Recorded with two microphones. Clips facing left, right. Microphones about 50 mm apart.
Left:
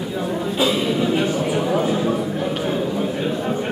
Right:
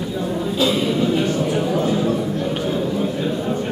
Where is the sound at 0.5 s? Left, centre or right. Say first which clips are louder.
Right 1 dB; centre.